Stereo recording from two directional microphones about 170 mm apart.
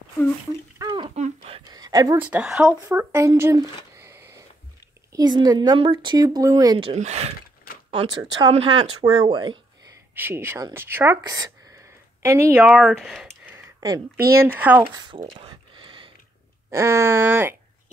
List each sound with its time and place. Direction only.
0.7 s a sound: 25° right (ahead or behind)
1.1 s a sound: 35° right (ahead or behind)
2.1 s speech: 5° right (ahead or behind); by 7.0 s 25° right (ahead or behind)
7.0 s speech: 40° right (ahead or behind)
8.1 s speech: 25° right (ahead or behind)
8.5 s speech: 35° right (ahead or behind)
9.0 s speech: 25° right (ahead or behind)
10.1 s speech: 15° right (ahead or behind)
13.5 s a sound: 20° right (ahead or behind)
14.3 s speech: 15° right (ahead or behind)
15.3 s a sound: 30° right (ahead or behind)
16.7 s speech: 15° right (ahead or behind)